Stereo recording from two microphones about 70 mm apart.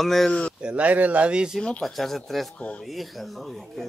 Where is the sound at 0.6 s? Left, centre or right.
Centre.